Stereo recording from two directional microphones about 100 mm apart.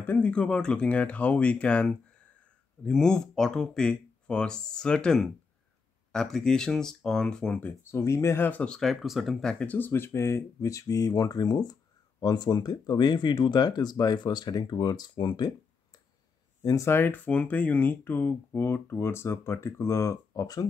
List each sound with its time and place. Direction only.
0.0 s speech: 15° left (ahead or behind)
7.8 s speech: 25° left (ahead or behind)
8.5 s speech: 10° left (ahead or behind)
9.0 s speech: centre (ahead or behind); by 16.0 s 45° left (ahead or behind)
16.6 s speech: 30° left (ahead or behind)